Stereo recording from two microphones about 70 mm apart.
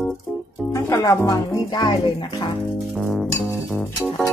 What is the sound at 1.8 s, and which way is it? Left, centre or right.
Music, left.